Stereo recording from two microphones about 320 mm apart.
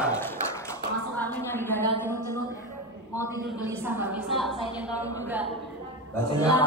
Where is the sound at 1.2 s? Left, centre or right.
Centre.